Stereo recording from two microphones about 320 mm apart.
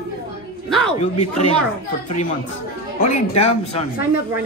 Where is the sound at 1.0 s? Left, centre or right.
Centre.